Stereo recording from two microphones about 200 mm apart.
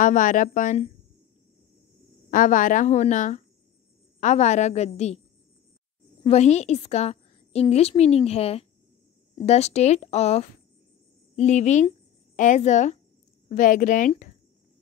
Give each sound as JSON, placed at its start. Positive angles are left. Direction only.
{"t": 0.0, "sound": "speech", "side_deg": 40}
{"t": 2.3, "sound": "speech", "side_deg": 40}
{"t": 6.2, "sound": "a woman's voice", "side_deg": 35}